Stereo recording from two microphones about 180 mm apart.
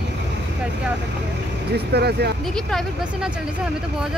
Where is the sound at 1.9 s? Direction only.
65° right (ahead or behind).